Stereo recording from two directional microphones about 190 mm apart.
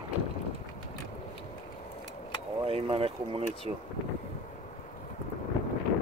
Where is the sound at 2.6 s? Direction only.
30° right (ahead or behind).